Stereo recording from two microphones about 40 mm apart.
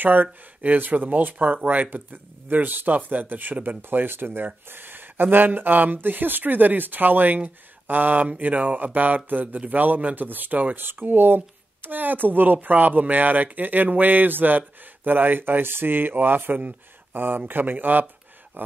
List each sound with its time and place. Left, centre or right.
0.0 s speech: right
10.9 s speech: right